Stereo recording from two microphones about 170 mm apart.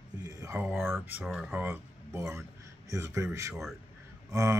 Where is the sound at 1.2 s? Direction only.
Centre (ahead or behind).